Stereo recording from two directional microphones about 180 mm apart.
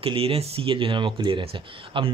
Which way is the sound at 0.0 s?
30° right (ahead or behind).